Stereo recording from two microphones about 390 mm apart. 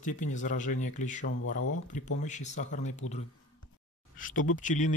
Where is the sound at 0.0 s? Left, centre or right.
Centre.